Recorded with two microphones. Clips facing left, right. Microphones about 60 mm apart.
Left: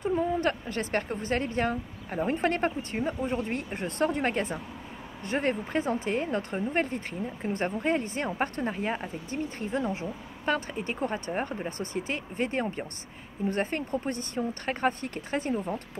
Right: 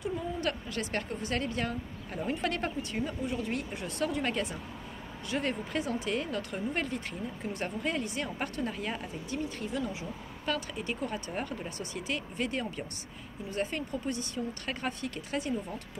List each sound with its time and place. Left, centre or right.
0.0 s speech: left